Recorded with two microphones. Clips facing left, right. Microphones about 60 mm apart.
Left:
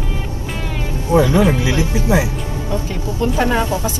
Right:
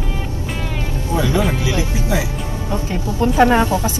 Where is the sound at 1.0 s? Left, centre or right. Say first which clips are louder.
Left 5 dB; left.